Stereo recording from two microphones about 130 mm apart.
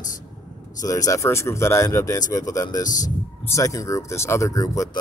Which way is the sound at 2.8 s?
75° left (ahead or behind).